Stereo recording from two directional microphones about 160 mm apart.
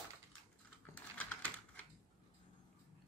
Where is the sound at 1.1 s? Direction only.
10° left (ahead or behind).